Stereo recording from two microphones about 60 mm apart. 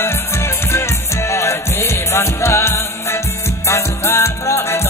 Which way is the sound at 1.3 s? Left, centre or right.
Left.